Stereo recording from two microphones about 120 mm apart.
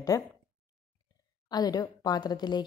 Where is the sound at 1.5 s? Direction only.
35° left (ahead or behind).